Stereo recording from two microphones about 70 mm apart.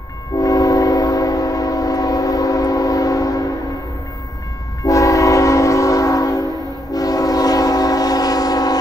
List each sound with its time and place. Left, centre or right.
0.4 s train: left
4.8 s train: left